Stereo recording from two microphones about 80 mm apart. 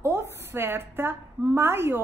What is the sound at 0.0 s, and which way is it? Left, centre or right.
A woman's voice, right.